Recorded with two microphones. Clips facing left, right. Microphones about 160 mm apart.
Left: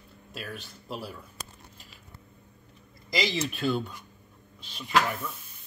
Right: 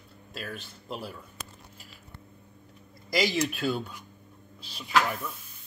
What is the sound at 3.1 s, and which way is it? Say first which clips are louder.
Speech: right 3 dB; centre (ahead or behind).